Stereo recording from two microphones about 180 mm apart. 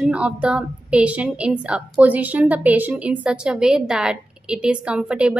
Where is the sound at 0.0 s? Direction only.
5° right (ahead or behind).